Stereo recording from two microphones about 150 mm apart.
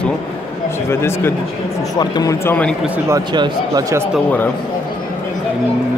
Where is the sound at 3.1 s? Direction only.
25° right (ahead or behind).